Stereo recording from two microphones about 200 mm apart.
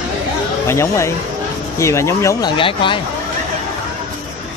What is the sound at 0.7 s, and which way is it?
Speech, 15° left (ahead or behind).